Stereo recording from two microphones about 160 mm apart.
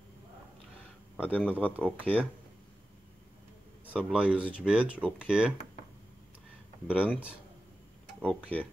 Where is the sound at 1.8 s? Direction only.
10° left (ahead or behind).